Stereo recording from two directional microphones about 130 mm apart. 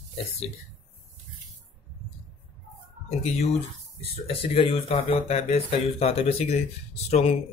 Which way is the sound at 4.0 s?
45° left (ahead or behind).